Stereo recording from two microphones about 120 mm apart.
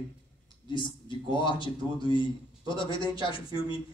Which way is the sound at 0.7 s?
40° left (ahead or behind).